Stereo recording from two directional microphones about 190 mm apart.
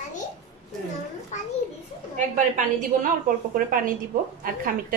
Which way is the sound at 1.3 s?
40° left (ahead or behind).